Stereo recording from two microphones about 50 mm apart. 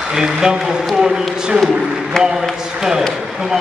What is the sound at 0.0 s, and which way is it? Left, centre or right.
Speech, centre.